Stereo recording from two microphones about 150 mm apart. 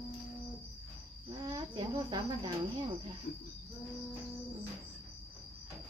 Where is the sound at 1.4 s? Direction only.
25° right (ahead or behind).